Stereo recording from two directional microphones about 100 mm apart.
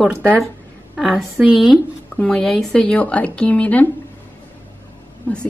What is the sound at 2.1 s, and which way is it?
Speech, 10° left (ahead or behind).